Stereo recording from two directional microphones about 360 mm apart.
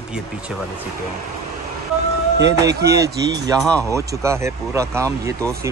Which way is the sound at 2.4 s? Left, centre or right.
Right.